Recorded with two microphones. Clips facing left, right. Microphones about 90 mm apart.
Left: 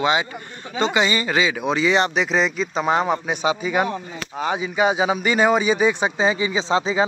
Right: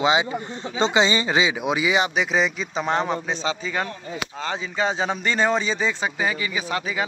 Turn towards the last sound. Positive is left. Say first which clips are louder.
# left 6 dB
turn(degrees=25)  # may be behind; listen again after turning